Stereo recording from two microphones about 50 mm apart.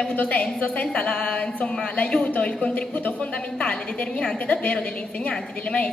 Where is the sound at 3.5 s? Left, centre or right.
Centre.